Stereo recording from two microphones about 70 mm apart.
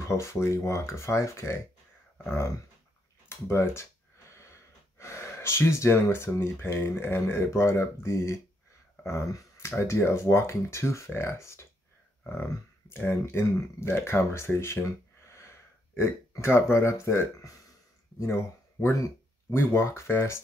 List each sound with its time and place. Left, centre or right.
0.1 s speech: left
12.9 s speech: left
16.0 s speech: left